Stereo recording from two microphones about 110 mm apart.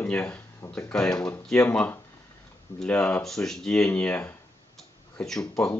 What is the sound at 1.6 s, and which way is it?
Speech, 15° left (ahead or behind).